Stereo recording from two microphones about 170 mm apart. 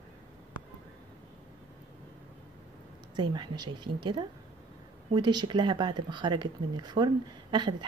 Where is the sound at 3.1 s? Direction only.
25° right (ahead or behind).